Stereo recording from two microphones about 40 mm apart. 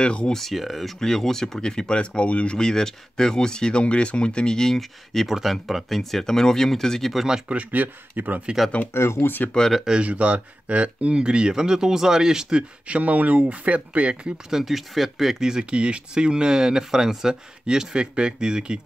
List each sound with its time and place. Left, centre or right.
0.0 s speech: left
0.3 s speech: centre
0.9 s speech: centre
2.0 s speech: left
2.5 s speech: centre
4.7 s speech: centre
5.3 s speech: centre
7.7 s speech: right
8.9 s speech: left
9.9 s speech: right
11.1 s speech: right
12.8 s speech: right
14.6 s speech: centre
15.4 s speech: right